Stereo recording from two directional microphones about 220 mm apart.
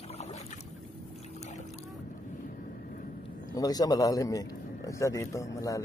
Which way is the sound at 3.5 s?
15° left (ahead or behind).